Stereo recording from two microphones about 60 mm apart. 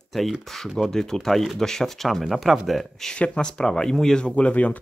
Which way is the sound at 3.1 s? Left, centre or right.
Centre.